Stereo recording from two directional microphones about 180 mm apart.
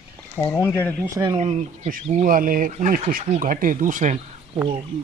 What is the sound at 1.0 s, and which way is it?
Speech, 20° right (ahead or behind).